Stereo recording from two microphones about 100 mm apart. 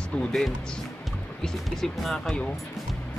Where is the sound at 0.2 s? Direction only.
5° left (ahead or behind).